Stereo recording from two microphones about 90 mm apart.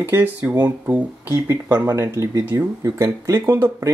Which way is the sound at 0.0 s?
20° right (ahead or behind).